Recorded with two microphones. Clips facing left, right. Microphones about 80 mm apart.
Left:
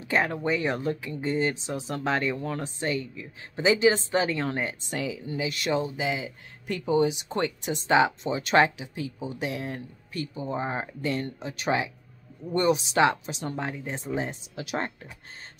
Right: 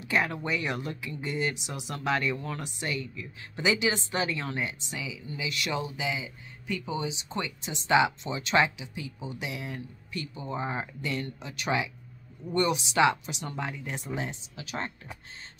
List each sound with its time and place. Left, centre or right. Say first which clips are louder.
0.0 s a woman's voice: left 3 dB; left
5.4 s a woman's voice: left 5 dB; left
7.8 s a woman's voice: left 2 dB; left